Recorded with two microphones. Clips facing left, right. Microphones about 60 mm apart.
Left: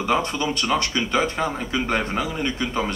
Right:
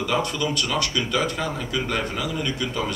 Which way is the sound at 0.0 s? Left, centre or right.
Left.